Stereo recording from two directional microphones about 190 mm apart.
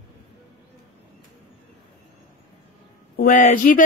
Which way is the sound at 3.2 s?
45° left (ahead or behind).